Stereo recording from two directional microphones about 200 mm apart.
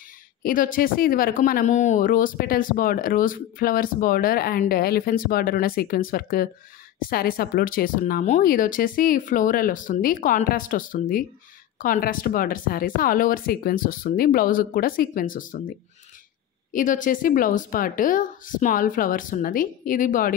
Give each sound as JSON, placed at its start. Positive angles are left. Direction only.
{"t": 0.4, "sound": "speech", "side_deg": 45}
{"t": 16.7, "sound": "speech", "side_deg": 40}